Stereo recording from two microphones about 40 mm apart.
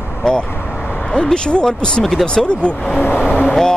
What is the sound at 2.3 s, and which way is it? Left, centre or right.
Speech, left.